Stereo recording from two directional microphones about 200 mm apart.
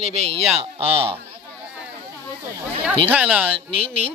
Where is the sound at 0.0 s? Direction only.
30° right (ahead or behind).